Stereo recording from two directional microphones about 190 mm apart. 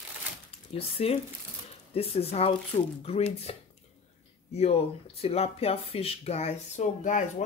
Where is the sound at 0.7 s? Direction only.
30° left (ahead or behind).